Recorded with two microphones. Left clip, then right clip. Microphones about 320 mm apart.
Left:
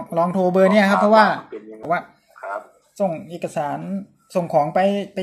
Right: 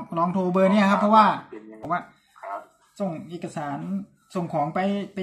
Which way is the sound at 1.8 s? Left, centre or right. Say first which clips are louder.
Left 5 dB; centre.